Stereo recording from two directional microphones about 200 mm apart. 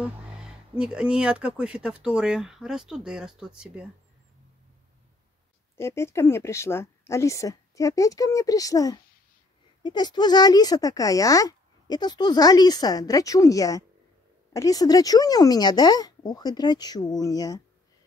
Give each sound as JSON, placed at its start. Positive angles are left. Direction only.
{"t": 0.0, "sound": "speech", "side_deg": -5}
{"t": 5.8, "sound": "a woman's voice", "side_deg": 15}